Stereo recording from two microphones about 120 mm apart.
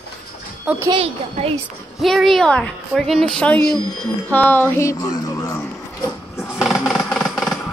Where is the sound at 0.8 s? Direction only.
50° right (ahead or behind).